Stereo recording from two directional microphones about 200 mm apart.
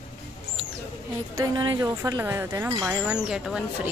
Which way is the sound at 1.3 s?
20° right (ahead or behind).